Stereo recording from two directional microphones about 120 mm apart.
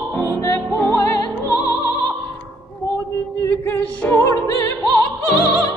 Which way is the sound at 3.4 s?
20° left (ahead or behind).